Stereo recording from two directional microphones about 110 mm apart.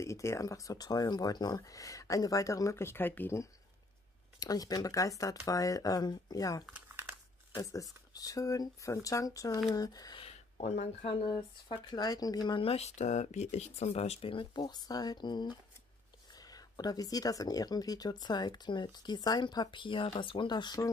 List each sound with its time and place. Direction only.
0.0 s speech: 25° left (ahead or behind)
4.4 s speech: 35° left (ahead or behind)
6.6 s crumpling: 15° right (ahead or behind)
7.5 s speech: 35° left (ahead or behind)
10.1 s speech: 75° left (ahead or behind)
11.2 s speech: 45° left (ahead or behind)
12.6 s speech: 75° left (ahead or behind); by 20.9 s 40° left (ahead or behind)